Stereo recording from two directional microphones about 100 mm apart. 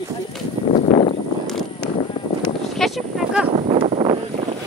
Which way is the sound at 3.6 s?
80° right.